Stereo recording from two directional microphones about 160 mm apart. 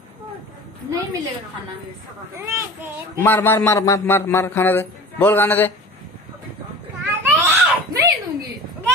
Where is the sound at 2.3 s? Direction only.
15° right (ahead or behind).